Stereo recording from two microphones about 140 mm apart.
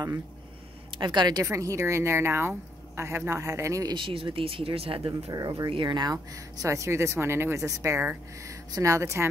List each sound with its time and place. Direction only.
0.9 s speech: 35° right (ahead or behind)
3.9 s speech: 40° right (ahead or behind)
5.3 s speech: 25° right (ahead or behind)
6.6 s speech: 20° right (ahead or behind)